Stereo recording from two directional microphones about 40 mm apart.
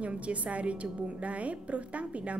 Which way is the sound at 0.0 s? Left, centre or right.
Right.